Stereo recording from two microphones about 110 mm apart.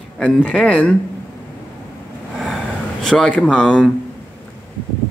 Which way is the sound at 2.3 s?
Centre (ahead or behind).